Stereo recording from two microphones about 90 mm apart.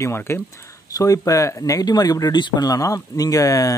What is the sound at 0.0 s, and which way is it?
Speech, 30° left (ahead or behind).